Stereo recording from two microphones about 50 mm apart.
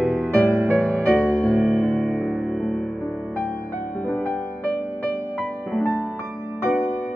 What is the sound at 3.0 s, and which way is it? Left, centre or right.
Music, right.